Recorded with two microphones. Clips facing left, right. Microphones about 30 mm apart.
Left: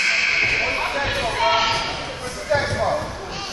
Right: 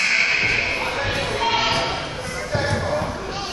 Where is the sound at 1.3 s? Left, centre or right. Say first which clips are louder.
Left 3 dB; centre.